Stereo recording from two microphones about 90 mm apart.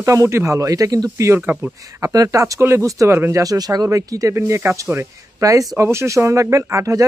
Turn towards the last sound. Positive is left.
turn(degrees=-35)  # may be behind; listen again after turning